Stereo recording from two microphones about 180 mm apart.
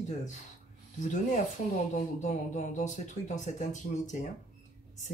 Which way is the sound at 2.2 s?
45° left (ahead or behind).